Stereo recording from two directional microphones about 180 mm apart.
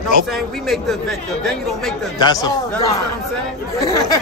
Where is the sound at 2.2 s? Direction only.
20° left (ahead or behind).